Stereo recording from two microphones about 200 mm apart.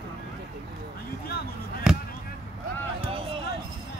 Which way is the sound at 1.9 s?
5° right (ahead or behind).